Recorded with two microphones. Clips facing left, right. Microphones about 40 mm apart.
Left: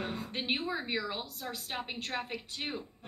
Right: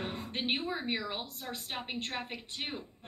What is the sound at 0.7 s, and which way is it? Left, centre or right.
A man's voice, right.